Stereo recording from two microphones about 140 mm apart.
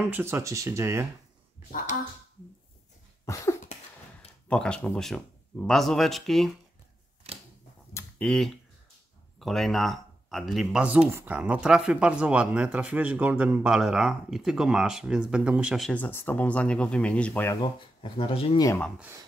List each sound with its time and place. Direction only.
0.0 s speech: 15° right (ahead or behind)
4.5 s speech: 5° left (ahead or behind)
8.2 s a man's voice: 5° left (ahead or behind)
15.9 s speech: 15° left (ahead or behind)
17.6 s speech: 35° left (ahead or behind)